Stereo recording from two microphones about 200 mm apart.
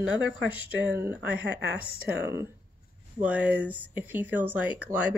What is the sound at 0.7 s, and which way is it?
Speech, 60° right (ahead or behind).